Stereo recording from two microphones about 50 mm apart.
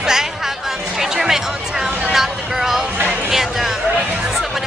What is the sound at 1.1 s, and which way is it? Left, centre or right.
Music, centre.